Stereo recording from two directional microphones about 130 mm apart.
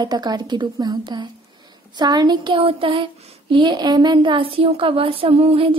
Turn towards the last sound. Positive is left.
turn(degrees=-45)  # may be behind; listen again after turning